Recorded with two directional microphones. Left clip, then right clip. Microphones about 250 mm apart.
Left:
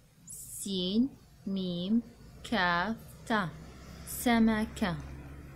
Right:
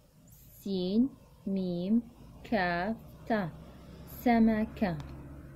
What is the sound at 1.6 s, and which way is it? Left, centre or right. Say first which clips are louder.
Speech: right 1 dB; left.